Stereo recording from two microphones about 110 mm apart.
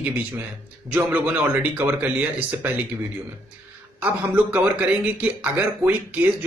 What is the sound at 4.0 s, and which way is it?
Speech, 15° right (ahead or behind).